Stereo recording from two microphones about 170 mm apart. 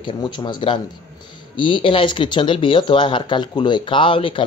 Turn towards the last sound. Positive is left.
turn(degrees=30)  # may be behind; listen again after turning